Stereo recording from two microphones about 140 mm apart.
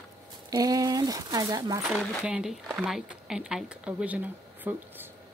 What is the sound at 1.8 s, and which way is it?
Speech, 5° right (ahead or behind).